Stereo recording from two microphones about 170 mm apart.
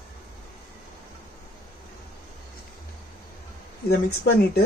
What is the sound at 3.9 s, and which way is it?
Speech, 65° left (ahead or behind).